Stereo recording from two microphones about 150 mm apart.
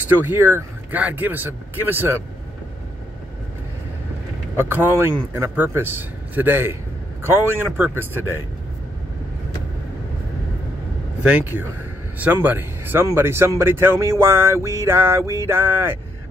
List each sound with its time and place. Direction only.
0.1 s speech: 15° right (ahead or behind)
4.6 s speech: 15° right (ahead or behind)
11.2 s speech: 10° right (ahead or behind)